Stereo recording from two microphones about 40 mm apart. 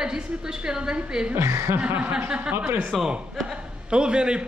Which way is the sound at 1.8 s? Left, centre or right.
Right.